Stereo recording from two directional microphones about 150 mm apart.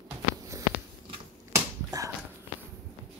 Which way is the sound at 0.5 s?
20° right (ahead or behind).